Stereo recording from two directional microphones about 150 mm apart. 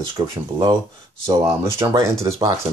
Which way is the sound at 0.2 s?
25° right (ahead or behind).